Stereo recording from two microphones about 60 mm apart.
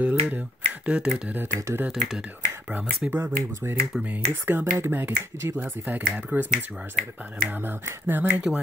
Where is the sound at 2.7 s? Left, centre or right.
Right.